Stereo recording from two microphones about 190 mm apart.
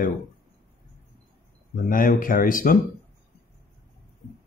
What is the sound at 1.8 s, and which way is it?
Speech, 45° left (ahead or behind).